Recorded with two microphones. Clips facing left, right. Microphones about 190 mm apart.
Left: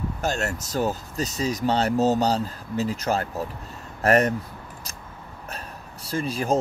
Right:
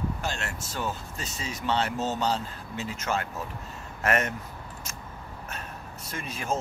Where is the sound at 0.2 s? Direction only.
40° left (ahead or behind).